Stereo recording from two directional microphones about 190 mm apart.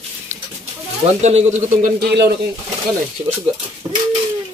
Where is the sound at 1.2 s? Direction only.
35° right (ahead or behind).